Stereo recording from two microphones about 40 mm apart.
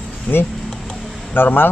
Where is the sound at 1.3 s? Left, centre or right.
Left.